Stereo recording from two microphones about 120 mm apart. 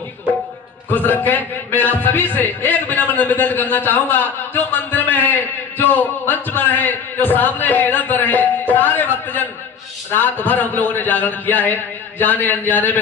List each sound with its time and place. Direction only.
0.8 s a man's voice: 15° left (ahead or behind)